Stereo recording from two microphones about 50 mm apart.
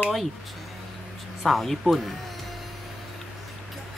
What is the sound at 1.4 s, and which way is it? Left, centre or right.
Speech, centre.